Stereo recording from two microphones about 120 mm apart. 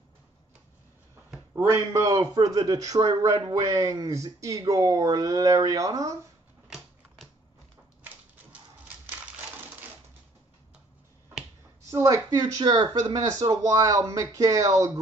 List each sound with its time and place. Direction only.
1.5 s speech: 25° right (ahead or behind)
11.8 s speech: 25° right (ahead or behind)